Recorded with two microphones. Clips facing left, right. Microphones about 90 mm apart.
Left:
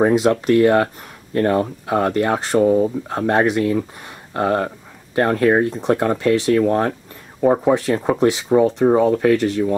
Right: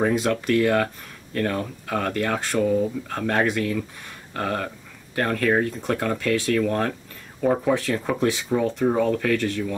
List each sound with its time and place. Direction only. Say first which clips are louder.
0.1 s speech: left 6 dB; 25° left (ahead or behind)